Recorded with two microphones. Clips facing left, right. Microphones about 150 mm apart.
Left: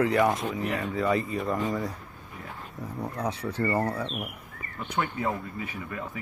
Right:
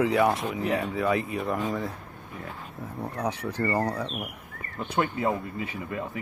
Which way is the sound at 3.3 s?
30° left (ahead or behind).